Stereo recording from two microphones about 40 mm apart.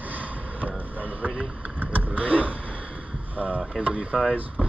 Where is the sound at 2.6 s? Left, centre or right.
Left.